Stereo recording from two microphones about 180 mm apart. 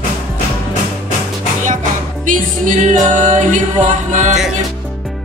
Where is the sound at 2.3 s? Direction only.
45° right (ahead or behind).